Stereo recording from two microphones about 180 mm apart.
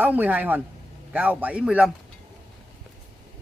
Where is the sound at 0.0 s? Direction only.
10° right (ahead or behind).